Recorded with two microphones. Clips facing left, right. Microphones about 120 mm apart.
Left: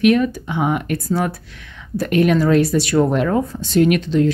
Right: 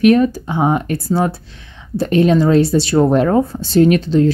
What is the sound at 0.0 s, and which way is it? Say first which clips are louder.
Speech: right 4 dB; 35° right (ahead or behind).